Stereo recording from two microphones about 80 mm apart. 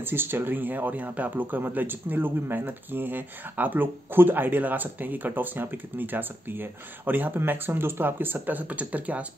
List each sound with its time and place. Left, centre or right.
0.0 s speech: right